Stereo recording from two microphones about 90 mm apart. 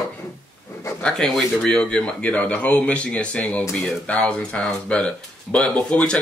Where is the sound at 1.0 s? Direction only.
5° left (ahead or behind).